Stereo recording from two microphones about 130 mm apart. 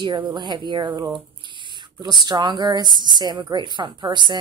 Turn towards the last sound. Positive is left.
turn(degrees=-35)  # may be behind; listen again after turning